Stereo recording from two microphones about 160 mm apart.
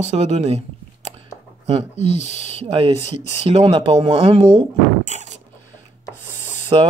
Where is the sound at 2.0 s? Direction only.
45° left (ahead or behind).